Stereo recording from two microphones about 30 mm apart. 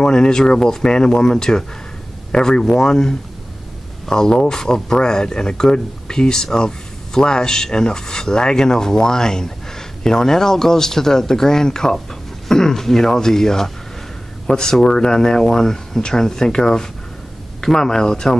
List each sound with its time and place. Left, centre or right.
0.0 s speech: left
0.8 s speech: left